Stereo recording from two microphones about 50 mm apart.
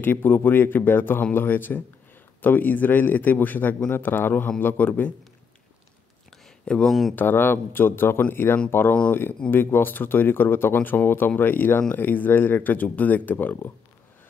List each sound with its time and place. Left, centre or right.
0.0 s speech: left
6.6 s speech: centre
6.9 s speech: centre
7.2 s speech: left